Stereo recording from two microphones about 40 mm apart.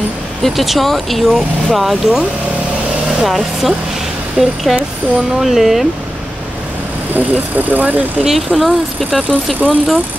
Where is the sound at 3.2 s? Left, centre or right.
Centre.